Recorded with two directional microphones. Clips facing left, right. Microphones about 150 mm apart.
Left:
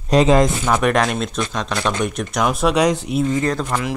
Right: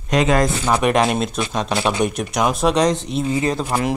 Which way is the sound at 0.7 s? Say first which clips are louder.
Right 1 dB; 10° right (ahead or behind).